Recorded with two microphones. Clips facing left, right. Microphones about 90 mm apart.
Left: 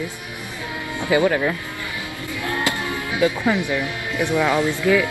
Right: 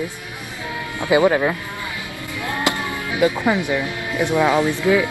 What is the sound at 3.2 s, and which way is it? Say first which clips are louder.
Speech: right 2 dB; 15° right (ahead or behind).